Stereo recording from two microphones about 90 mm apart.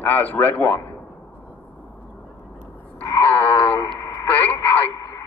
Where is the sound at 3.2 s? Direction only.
20° left (ahead or behind).